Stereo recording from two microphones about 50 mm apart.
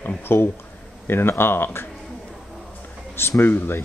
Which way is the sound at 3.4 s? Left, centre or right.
Left.